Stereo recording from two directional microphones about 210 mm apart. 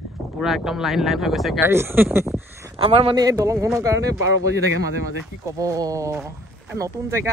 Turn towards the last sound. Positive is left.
turn(degrees=-15)  # may be behind; listen again after turning